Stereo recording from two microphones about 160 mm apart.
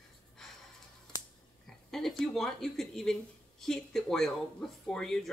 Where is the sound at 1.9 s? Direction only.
Centre (ahead or behind).